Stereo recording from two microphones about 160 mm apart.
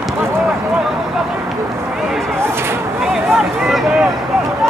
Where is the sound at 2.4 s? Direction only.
15° right (ahead or behind).